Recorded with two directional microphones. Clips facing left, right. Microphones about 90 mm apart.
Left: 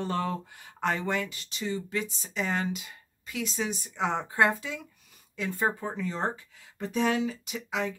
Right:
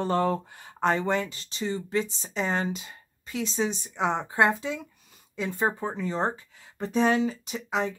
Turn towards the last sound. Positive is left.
turn(degrees=-35)  # may be behind; listen again after turning